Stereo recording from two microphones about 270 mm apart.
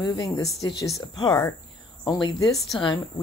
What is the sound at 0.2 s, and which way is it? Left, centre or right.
Speech, centre.